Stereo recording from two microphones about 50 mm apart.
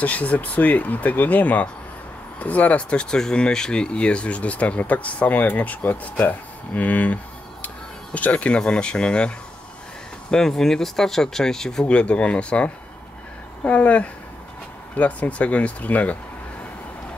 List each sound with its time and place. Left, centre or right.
0.0 s speech: left
10.3 s speech: centre
11.8 s speech: left